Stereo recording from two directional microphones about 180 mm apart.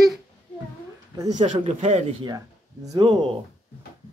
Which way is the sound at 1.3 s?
40° right (ahead or behind).